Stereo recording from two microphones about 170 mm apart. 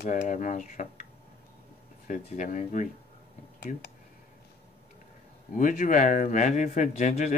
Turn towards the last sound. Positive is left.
turn(degrees=40)  # may be behind; listen again after turning